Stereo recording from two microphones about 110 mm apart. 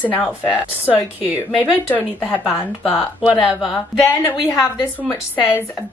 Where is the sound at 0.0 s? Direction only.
15° left (ahead or behind).